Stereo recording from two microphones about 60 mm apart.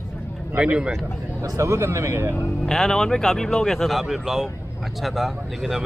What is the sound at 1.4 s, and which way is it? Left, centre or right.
Speech, right.